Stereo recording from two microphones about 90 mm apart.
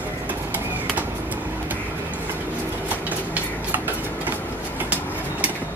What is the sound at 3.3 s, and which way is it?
Tick-tock, 20° right (ahead or behind).